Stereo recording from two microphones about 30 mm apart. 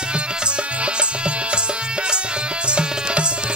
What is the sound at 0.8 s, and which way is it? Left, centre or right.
Music, right.